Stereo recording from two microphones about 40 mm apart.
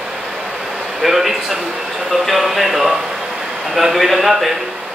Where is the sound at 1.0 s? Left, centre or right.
Centre.